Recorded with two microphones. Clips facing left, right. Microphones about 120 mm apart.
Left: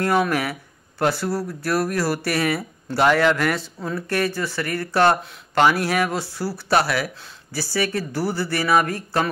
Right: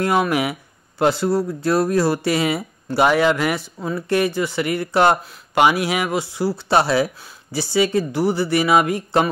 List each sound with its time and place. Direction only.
0.0 s speech: 15° right (ahead or behind)